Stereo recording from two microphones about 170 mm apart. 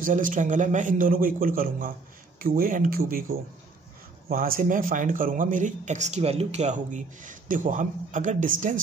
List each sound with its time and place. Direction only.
0.0 s a man's voice: 50° right (ahead or behind)